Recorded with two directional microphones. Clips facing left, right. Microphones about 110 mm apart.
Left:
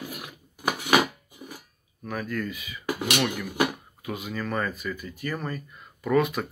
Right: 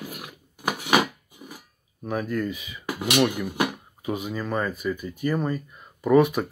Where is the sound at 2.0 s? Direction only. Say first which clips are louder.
Right 4 dB; 20° right (ahead or behind).